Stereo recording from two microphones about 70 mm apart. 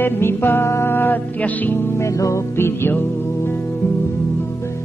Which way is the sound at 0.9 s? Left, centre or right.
Left.